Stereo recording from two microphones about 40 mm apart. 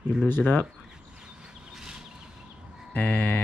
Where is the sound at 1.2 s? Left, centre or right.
Centre.